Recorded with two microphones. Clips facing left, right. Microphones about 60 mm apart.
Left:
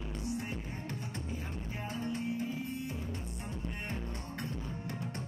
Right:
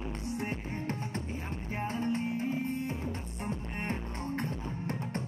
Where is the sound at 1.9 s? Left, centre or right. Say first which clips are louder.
Right 4 dB; right.